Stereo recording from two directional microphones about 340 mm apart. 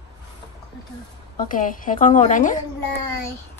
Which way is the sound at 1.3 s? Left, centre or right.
Left.